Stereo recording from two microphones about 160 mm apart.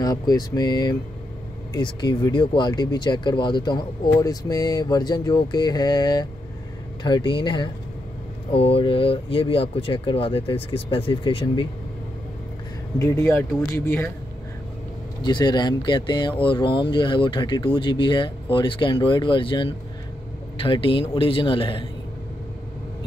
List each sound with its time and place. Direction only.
0.0 s speech: 25° left (ahead or behind)
13.0 s speech: 15° left (ahead or behind)
15.2 s speech: 25° left (ahead or behind)